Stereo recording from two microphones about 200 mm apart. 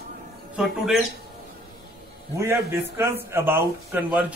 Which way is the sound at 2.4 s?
15° right (ahead or behind).